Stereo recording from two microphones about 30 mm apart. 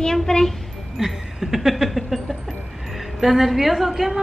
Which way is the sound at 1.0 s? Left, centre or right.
Centre.